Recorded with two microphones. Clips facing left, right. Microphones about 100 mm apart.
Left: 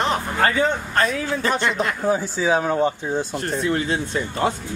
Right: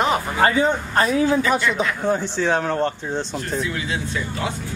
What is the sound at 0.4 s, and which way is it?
Speech, 15° right (ahead or behind).